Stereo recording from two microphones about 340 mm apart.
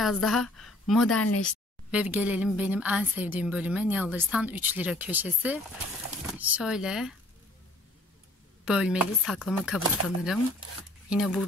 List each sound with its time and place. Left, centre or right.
0.0 s a woman's voice: centre
1.0 s speech: left
1.5 s a woman's voice: centre
8.6 s a woman's voice: centre